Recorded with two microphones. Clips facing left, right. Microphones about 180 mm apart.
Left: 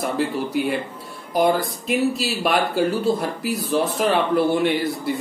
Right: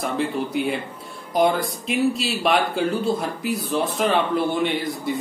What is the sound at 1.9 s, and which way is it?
Speech, centre (ahead or behind).